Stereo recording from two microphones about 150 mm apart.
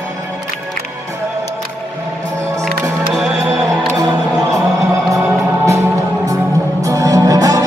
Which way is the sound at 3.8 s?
25° right (ahead or behind).